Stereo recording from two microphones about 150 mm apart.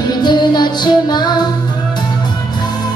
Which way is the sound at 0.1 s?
30° left (ahead or behind).